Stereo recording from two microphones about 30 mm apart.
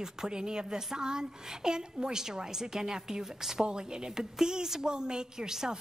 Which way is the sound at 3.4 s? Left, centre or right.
Centre.